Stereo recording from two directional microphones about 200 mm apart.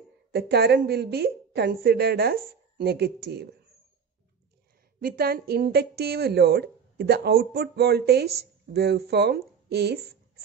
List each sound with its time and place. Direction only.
0.3 s a woman's voice: 55° right (ahead or behind)
5.0 s a woman's voice: 50° right (ahead or behind)